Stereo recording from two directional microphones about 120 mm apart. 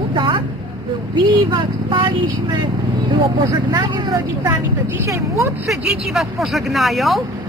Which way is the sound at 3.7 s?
35° right (ahead or behind).